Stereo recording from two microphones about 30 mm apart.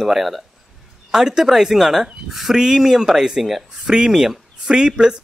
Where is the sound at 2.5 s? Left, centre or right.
Centre.